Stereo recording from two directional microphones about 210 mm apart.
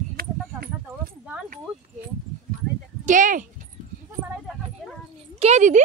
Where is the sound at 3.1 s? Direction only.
40° right (ahead or behind).